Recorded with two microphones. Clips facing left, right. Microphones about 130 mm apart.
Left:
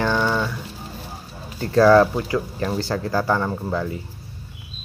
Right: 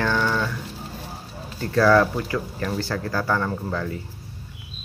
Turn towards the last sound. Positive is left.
turn(degrees=15)  # may be behind; listen again after turning